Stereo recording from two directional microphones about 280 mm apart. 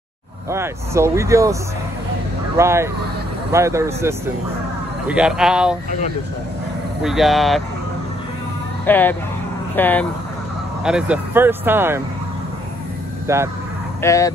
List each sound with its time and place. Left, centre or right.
0.5 s speech: centre
5.9 s speech: left
7.0 s speech: centre
8.8 s speech: centre
13.3 s speech: centre
14.0 s speech: centre